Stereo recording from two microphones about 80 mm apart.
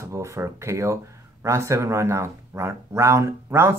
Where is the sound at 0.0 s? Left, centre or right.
Right.